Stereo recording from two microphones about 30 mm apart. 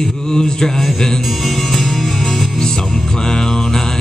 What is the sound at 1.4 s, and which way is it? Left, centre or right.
Music, centre.